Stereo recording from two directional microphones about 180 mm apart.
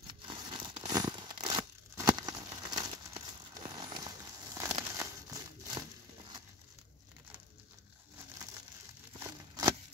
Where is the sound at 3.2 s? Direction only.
25° right (ahead or behind).